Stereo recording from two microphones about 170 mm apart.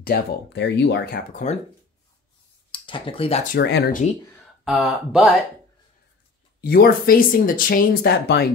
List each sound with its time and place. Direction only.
0.0 s speech: 65° left (ahead or behind)
2.7 s speech: 30° left (ahead or behind)
3.5 s speech: 80° left
4.6 s speech: centre (ahead or behind)
6.6 s speech: 65° left (ahead or behind)